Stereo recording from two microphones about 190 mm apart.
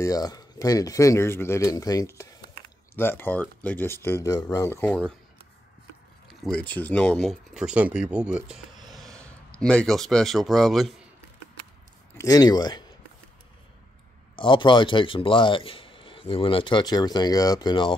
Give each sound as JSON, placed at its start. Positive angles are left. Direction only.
{"t": 0.0, "sound": "speech", "side_deg": 20}
{"t": 6.2, "sound": "speech", "side_deg": 5}
{"t": 12.2, "sound": "speech", "side_deg": 20}
{"t": 14.3, "sound": "a man's voice", "side_deg": 25}